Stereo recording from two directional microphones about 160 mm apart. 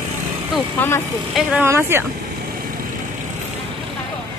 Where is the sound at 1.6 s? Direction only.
15° right (ahead or behind).